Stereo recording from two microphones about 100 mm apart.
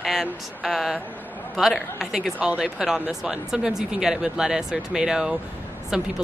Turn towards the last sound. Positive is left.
turn(degrees=-5)  # may be behind; listen again after turning